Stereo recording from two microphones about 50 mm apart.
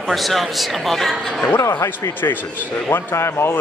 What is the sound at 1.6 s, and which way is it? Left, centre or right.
Speech, left.